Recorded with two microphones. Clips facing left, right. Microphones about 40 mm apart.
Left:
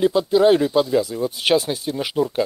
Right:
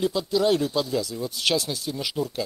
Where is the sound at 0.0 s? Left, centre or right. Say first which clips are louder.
Left 7 dB; left.